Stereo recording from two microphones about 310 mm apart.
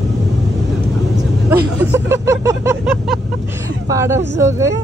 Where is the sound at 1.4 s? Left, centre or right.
Centre.